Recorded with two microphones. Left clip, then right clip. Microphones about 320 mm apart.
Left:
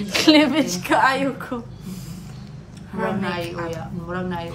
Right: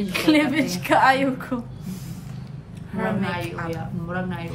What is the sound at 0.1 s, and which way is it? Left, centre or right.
Speech, left.